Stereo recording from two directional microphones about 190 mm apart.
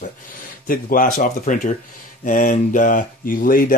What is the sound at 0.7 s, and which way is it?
Speech, 50° left (ahead or behind).